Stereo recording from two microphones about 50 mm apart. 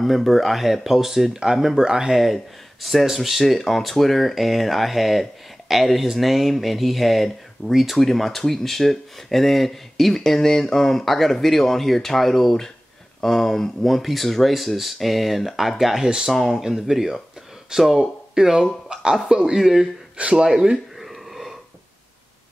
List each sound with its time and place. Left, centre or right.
0.0 s speech: centre
2.1 s speech: centre
18.9 s a sound: centre
19.2 s speech: centre
20.2 s speech: right
20.4 s a sound: centre